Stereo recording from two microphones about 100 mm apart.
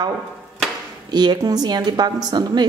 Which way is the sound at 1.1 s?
45° right (ahead or behind).